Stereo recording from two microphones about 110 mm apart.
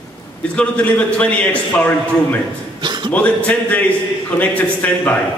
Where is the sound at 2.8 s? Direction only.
45° right (ahead or behind).